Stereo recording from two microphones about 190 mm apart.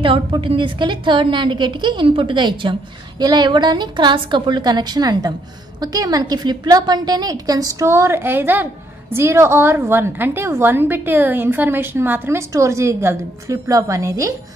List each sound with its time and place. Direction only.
0.0 s a woman's voice: 25° right (ahead or behind)